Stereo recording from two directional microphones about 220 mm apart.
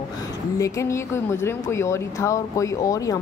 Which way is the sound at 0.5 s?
15° left (ahead or behind).